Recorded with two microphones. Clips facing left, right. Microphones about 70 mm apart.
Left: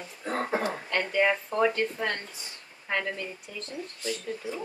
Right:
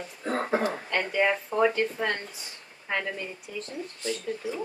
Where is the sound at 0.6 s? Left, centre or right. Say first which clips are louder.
Right 1 dB; centre.